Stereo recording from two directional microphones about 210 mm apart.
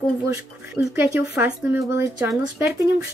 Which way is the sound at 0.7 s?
10° right (ahead or behind).